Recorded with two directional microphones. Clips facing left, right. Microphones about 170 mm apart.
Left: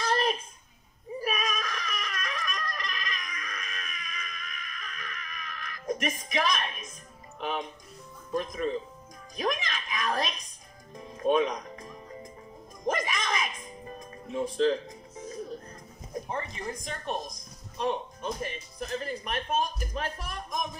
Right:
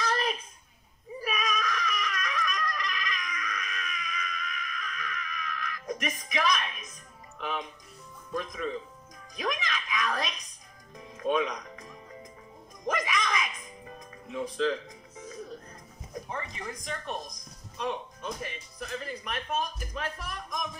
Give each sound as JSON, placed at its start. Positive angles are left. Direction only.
{"t": 0.0, "sound": "a sound", "side_deg": 30}
{"t": 7.3, "sound": "a woman's voice", "side_deg": 35}
{"t": 11.0, "sound": "music", "side_deg": 30}
{"t": 16.3, "sound": "speech", "side_deg": 35}